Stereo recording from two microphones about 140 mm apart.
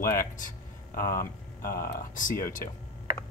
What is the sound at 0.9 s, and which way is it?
Speech, 85° left.